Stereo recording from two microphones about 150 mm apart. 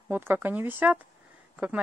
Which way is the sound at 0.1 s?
10° right (ahead or behind).